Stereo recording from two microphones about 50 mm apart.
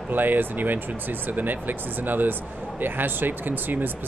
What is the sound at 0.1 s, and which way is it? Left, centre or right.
Speech, right.